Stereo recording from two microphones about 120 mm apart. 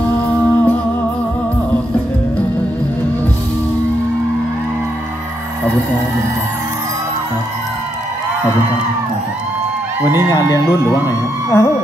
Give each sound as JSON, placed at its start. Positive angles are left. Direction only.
{"t": 0.3, "sound": "music", "side_deg": 15}
{"t": 10.0, "sound": "speech", "side_deg": 30}